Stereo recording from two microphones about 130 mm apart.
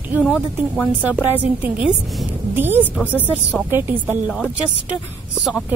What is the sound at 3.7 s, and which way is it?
Speech, 15° right (ahead or behind).